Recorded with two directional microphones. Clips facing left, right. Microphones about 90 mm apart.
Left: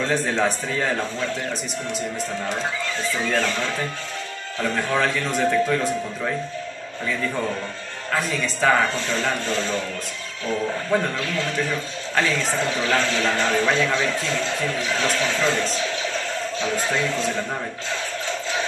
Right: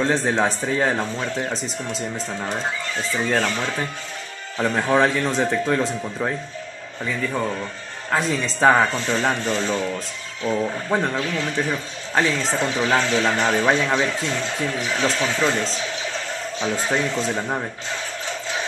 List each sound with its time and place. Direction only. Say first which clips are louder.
0.0 s a man's voice: right 2 dB; 25° right (ahead or behind)
4.6 s a man's voice: right 4 dB; 25° right (ahead or behind)
8.1 s a man's voice: right 2 dB; 25° right (ahead or behind)
10.9 s a man's voice: even; 25° right (ahead or behind)
16.7 s a man's voice: right 2 dB; 25° right (ahead or behind)